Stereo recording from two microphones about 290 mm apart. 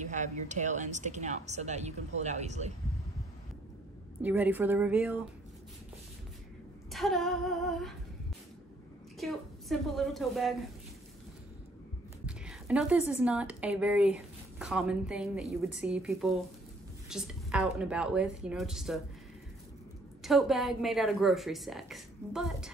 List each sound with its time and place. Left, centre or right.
0.0 s speech: right
4.2 s a woman's voice: centre
6.9 s a woman's voice: centre
9.2 s a woman's voice: centre
12.3 s a woman's voice: centre
20.2 s a woman's voice: centre